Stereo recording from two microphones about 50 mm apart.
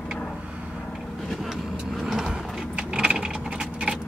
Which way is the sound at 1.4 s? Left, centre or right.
Centre.